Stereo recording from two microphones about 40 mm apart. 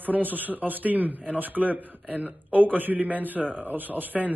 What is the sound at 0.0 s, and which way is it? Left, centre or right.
A man's voice, right.